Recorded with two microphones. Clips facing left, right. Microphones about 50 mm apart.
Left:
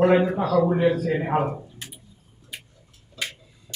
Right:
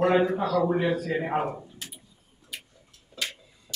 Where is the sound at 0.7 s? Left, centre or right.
Centre.